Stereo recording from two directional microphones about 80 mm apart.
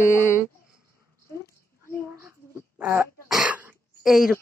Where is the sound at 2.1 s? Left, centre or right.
Right.